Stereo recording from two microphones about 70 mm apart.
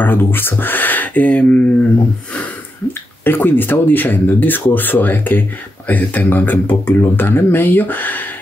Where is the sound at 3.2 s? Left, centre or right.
Left.